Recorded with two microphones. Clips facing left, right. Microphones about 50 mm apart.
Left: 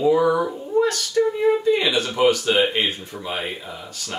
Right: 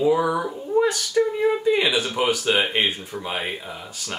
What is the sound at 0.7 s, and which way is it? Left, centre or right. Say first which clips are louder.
Speech: even; centre.